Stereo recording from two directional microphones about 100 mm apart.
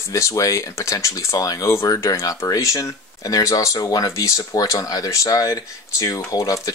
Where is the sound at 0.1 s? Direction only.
30° left (ahead or behind).